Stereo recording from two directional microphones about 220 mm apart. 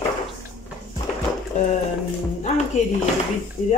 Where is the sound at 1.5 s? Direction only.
35° left (ahead or behind).